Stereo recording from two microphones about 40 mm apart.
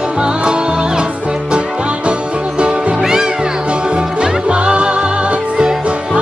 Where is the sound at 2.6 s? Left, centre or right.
Right.